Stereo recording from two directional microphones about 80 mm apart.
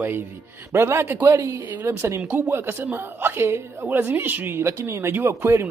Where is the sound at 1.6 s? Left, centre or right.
Right.